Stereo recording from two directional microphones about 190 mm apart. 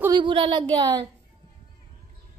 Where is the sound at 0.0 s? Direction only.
25° right (ahead or behind).